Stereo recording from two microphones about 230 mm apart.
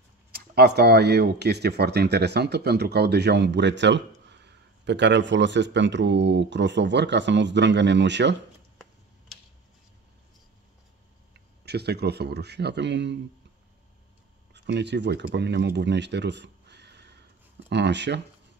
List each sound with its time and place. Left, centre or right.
0.3 s speech: right
11.6 s speech: right
14.5 s speech: right